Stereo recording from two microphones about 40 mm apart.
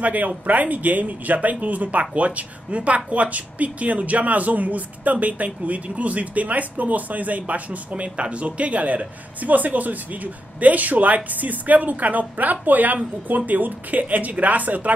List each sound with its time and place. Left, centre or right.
0.0 s speech: right